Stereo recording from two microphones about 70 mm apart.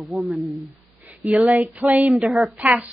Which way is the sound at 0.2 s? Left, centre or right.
Centre.